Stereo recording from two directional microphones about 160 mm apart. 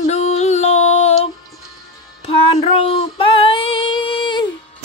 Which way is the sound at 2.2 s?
35° left (ahead or behind).